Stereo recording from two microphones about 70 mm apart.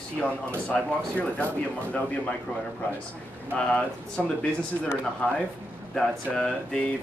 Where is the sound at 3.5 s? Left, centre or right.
Centre.